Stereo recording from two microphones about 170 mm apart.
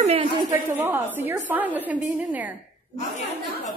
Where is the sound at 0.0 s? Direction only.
35° right (ahead or behind).